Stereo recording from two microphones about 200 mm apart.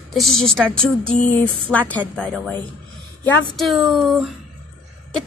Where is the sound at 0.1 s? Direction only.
Centre (ahead or behind).